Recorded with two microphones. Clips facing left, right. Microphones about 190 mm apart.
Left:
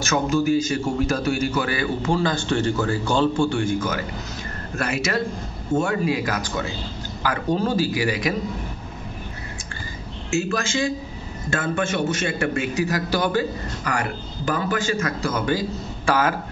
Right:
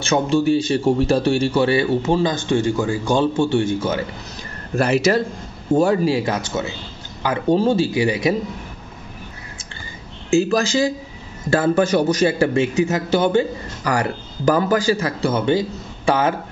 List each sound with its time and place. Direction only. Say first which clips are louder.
0.0 s a man's voice: right 3 dB; 30° right (ahead or behind)
10.3 s a man's voice: right 7 dB; 35° right (ahead or behind)